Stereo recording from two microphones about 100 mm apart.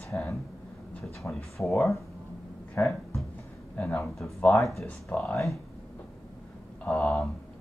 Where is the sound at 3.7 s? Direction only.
5° left (ahead or behind).